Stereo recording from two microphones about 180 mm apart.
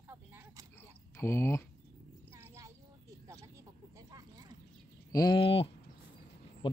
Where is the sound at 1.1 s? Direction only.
15° left (ahead or behind).